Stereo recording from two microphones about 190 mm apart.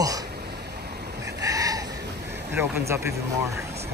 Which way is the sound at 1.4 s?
20° right (ahead or behind).